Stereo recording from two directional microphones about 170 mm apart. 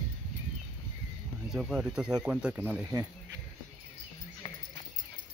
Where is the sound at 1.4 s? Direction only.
5° right (ahead or behind).